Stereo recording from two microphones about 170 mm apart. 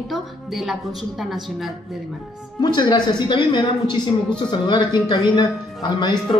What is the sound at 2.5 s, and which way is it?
A man's voice, 25° left (ahead or behind).